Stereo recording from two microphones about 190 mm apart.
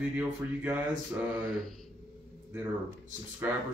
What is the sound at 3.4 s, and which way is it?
Speech, 10° right (ahead or behind).